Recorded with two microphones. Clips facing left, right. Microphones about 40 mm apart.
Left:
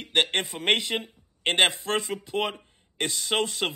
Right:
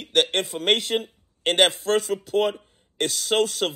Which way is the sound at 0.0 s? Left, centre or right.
Left.